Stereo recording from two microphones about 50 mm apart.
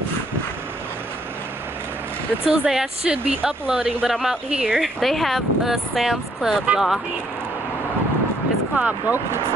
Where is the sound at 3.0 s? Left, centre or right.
Right.